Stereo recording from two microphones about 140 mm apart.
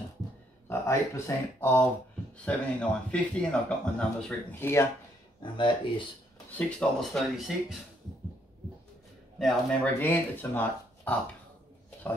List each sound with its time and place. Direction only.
0.7 s a man's voice: 20° left (ahead or behind)
5.4 s speech: 35° left (ahead or behind)
6.5 s speech: 5° left (ahead or behind)
9.4 s speech: centre (ahead or behind)
9.9 s a man's voice: 15° left (ahead or behind)